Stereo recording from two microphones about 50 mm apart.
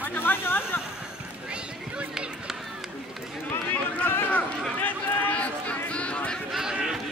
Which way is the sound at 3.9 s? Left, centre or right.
Left.